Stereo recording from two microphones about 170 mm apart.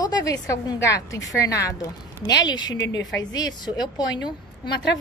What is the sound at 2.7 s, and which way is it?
Speech, 90° left.